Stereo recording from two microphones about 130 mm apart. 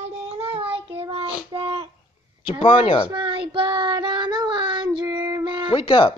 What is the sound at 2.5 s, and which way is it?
Speech, 40° left (ahead or behind).